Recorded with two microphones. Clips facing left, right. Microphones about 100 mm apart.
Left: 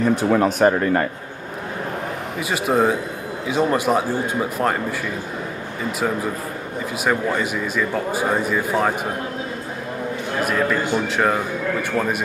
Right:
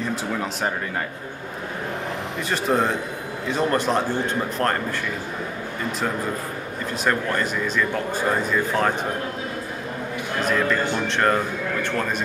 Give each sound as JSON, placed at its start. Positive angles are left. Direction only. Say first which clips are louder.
{"t": 0.0, "sound": "speech", "louder": "left 9 dB", "side_deg": 60}
{"t": 2.5, "sound": "speech", "louder": "left 3 dB", "side_deg": 10}
{"t": 7.1, "sound": "speech", "louder": "left 2 dB", "side_deg": 10}
{"t": 10.4, "sound": "speech", "louder": "left 1 dB", "side_deg": 10}